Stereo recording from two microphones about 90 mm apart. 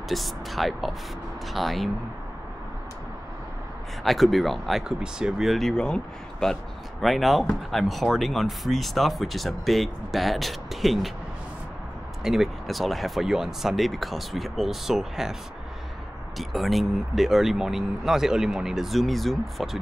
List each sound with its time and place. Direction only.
0.1 s speech: centre (ahead or behind)
4.0 s speech: centre (ahead or behind)
12.2 s speech: 5° right (ahead or behind)
16.3 s speech: centre (ahead or behind)